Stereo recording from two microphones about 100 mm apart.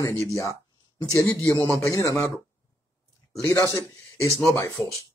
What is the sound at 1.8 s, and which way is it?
Speech, 35° left (ahead or behind).